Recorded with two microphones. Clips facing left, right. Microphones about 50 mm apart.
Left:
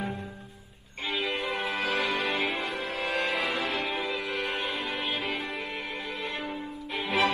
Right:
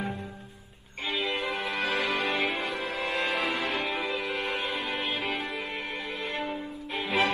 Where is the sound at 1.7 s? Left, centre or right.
Right.